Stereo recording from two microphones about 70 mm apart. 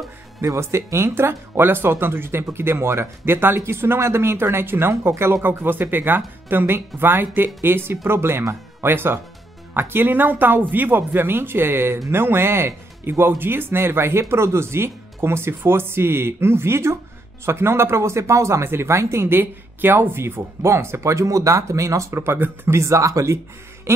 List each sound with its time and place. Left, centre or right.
0.5 s speech: right